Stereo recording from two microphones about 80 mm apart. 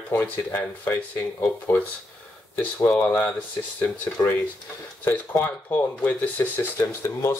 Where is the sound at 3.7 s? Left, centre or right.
Left.